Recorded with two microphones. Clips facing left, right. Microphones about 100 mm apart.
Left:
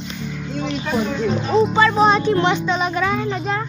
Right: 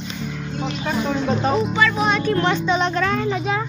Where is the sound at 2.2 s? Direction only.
15° left (ahead or behind).